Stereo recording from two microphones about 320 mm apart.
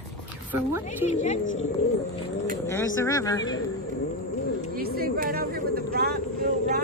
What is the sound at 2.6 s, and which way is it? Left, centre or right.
Speech, centre.